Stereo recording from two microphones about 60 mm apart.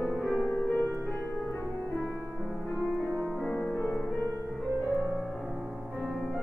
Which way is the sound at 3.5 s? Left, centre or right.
Left.